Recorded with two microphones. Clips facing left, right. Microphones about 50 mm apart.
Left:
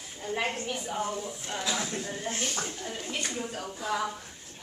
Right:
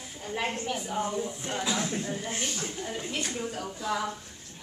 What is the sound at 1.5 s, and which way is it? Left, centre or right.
A woman's voice, centre.